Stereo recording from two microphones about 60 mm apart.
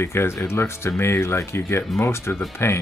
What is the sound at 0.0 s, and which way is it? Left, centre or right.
Speech, left.